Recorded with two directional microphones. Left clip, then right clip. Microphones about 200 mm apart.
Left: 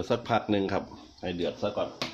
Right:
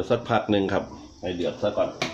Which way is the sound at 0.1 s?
25° left (ahead or behind).